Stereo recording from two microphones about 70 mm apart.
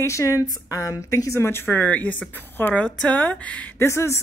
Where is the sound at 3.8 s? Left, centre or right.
Left.